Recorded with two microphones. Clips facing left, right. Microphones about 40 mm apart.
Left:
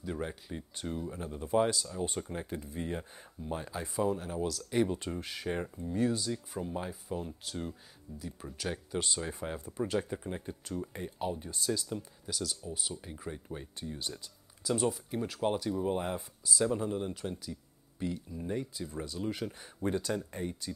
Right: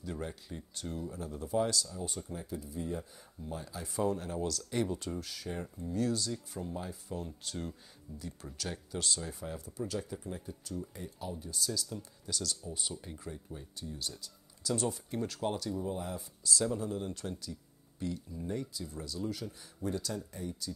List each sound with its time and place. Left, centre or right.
0.0 s speech: left
2.0 s speech: left
3.9 s speech: centre
4.8 s speech: left
5.8 s speech: left
12.0 s speech: centre
13.3 s speech: left
13.9 s speech: left
14.7 s speech: centre
15.7 s speech: left
16.4 s speech: centre; by 20.7 s left